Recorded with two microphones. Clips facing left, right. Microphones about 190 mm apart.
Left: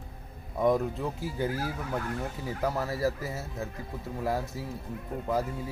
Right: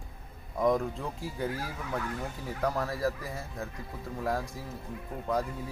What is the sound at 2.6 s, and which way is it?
Speech, 5° left (ahead or behind).